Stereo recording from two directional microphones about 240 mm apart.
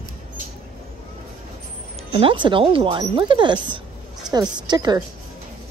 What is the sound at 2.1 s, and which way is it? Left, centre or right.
A woman's voice, centre.